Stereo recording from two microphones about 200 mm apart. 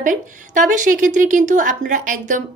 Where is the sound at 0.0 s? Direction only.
40° right (ahead or behind).